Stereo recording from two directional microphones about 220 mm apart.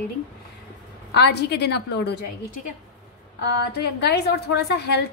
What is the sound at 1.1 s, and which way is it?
A woman's voice, 50° left (ahead or behind).